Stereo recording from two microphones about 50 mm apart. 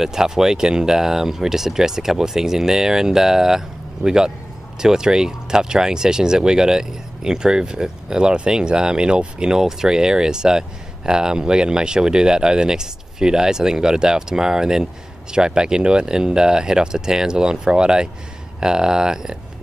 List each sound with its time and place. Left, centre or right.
0.0 s speech: centre